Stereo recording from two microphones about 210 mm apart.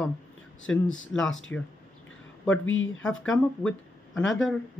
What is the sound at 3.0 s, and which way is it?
Speech, 5° left (ahead or behind).